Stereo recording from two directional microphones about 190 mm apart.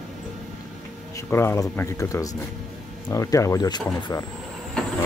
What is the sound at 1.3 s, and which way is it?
Speech, 10° left (ahead or behind).